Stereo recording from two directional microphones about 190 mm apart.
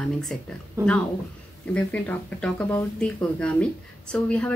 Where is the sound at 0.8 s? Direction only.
15° right (ahead or behind).